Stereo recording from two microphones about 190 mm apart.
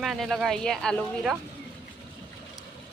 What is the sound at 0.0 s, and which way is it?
Speech, centre (ahead or behind).